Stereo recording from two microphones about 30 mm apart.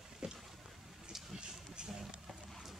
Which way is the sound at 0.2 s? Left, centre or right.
Right.